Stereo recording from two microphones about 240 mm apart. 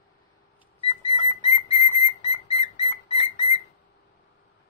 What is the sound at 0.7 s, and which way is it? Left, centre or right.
Whistle, left.